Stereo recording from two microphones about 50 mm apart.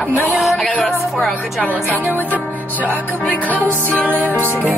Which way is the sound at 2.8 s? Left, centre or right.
Right.